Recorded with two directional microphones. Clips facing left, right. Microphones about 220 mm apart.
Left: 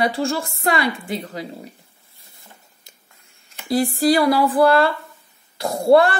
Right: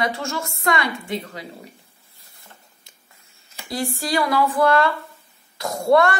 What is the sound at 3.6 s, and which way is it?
A woman's voice, 35° left (ahead or behind).